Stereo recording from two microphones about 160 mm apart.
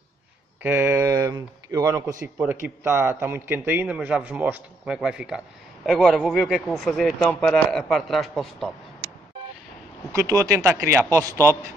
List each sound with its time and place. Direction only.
0.6 s a man's voice: 10° right (ahead or behind)
10.1 s speech: 20° right (ahead or behind)